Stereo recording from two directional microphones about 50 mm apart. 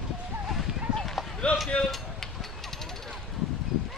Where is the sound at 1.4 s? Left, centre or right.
Left.